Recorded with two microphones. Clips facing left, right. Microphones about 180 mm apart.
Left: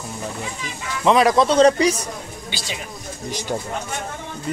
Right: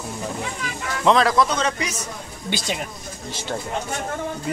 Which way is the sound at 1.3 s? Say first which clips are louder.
Left 7 dB; 30° left (ahead or behind).